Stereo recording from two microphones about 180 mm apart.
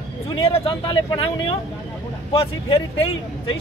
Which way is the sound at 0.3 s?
30° left (ahead or behind).